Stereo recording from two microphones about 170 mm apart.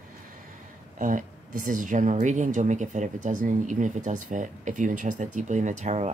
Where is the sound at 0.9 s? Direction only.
50° right (ahead or behind).